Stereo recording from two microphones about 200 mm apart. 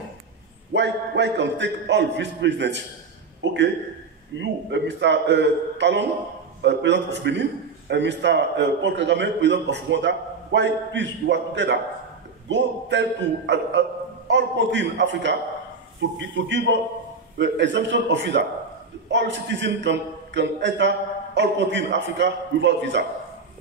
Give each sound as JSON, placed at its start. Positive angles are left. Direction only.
{"t": 0.7, "sound": "a man's voice", "side_deg": -65}
{"t": 3.4, "sound": "a sound", "side_deg": -60}
{"t": 4.4, "sound": "a man's voice", "side_deg": -60}